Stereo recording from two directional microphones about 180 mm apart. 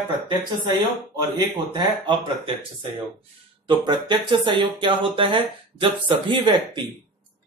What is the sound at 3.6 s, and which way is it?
Speech, 25° right (ahead or behind).